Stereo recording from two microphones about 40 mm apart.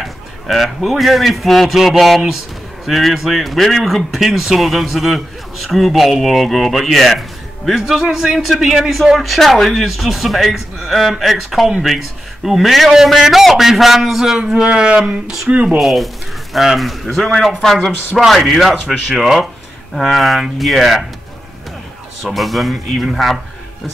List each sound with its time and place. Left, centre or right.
0.0 s a man's voice: centre
7.8 s a man's voice: centre
14.4 s speech: right
15.8 s speech: centre
18.2 s speech: centre
22.2 s speech: centre